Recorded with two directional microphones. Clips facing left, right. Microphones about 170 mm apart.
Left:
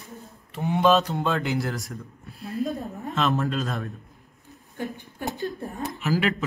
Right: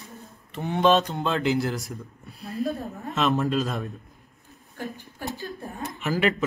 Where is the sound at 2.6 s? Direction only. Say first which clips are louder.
Right 1 dB; 20° left (ahead or behind).